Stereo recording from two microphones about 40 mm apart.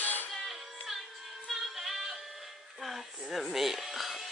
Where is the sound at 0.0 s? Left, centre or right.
Left.